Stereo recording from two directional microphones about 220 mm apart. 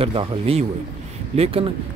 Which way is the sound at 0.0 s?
25° right (ahead or behind).